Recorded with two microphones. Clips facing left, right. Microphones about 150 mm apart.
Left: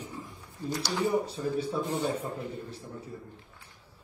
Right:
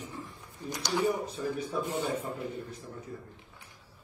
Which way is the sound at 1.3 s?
30° left (ahead or behind).